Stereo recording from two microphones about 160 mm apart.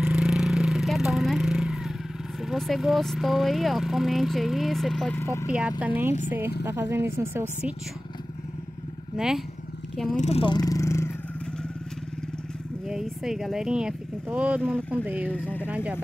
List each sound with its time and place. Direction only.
0.0 s vehicle: 5° right (ahead or behind)
2.4 s speech: centre (ahead or behind)
5.1 s speech: 15° left (ahead or behind)
5.5 s a woman's voice: 10° right (ahead or behind)
9.1 s speech: 5° right (ahead or behind)
10.1 s speech: 40° left (ahead or behind); by 11.1 s 15° left (ahead or behind)
12.8 s speech: 5° right (ahead or behind)
14.6 s speech: 5° left (ahead or behind)
14.9 s a woman's voice: 10° right (ahead or behind)
15.3 s speech: 10° left (ahead or behind)
15.6 s a woman's voice: 5° right (ahead or behind)